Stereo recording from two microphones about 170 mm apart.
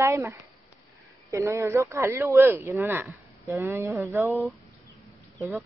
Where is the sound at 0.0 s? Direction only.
15° right (ahead or behind).